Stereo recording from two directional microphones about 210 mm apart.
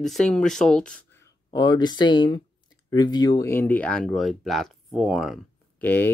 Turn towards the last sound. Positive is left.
turn(degrees=10)  # may be behind; listen again after turning